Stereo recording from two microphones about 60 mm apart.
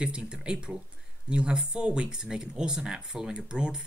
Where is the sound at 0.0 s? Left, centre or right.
Centre.